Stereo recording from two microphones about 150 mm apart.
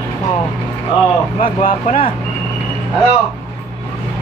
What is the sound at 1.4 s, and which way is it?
Speech, 70° left (ahead or behind).